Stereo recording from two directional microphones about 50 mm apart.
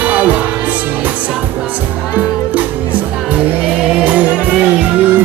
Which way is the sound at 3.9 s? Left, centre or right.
Right.